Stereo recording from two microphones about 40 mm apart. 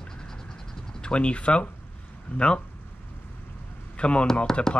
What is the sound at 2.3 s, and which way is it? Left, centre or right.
Speech, left.